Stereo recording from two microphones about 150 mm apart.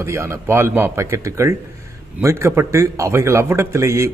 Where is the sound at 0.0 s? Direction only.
20° right (ahead or behind).